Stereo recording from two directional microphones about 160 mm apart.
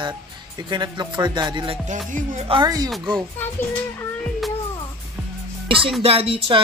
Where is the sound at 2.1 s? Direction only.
55° right (ahead or behind).